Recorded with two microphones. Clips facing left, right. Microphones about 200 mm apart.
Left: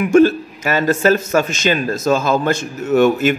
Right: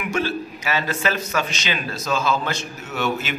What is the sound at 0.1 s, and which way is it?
A man's voice, 50° left (ahead or behind).